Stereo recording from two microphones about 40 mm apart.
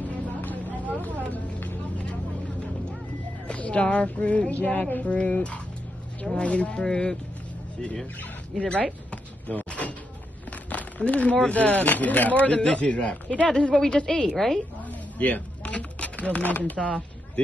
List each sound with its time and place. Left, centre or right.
0.1 s vehicle: left
3.4 s speech: left
8.5 s speech: left
9.1 s door: left
10.5 s a sound: left
11.4 s speech: left
13.5 s a woman's voice: centre
14.9 s a sound: left
16.5 s speech: left